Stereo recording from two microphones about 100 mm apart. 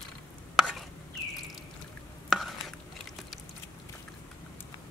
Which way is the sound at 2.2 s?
Centre (ahead or behind).